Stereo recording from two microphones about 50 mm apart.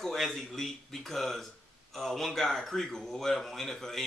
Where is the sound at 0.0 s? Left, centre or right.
Centre.